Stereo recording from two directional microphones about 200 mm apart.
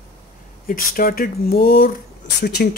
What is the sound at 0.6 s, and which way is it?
Speech, 45° left (ahead or behind).